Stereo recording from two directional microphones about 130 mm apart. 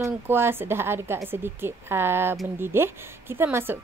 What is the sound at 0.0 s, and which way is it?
A woman's voice, 15° right (ahead or behind).